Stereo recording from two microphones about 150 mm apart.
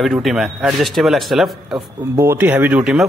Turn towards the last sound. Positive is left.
turn(degrees=-5)  # may be behind; listen again after turning